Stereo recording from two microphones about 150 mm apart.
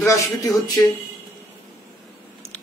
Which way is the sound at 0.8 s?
15° left (ahead or behind).